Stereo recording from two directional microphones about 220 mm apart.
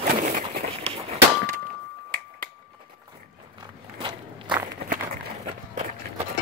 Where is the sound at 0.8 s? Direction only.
25° right (ahead or behind).